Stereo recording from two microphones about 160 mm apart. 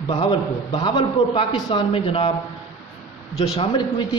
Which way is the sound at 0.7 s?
30° left (ahead or behind).